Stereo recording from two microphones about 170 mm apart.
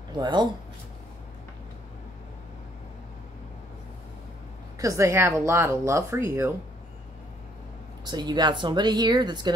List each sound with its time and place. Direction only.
0.2 s speech: 25° right (ahead or behind)
4.7 s speech: 20° right (ahead or behind)
8.1 s speech: 25° right (ahead or behind)